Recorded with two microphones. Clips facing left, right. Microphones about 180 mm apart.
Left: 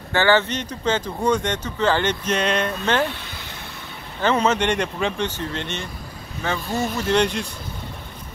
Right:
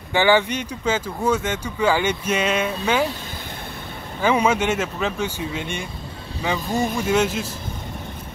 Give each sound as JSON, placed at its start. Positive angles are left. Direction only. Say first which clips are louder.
{"t": 0.1, "sound": "speech", "louder": "right 1 dB", "side_deg": -15}
{"t": 4.2, "sound": "speech", "louder": "right 1 dB", "side_deg": -10}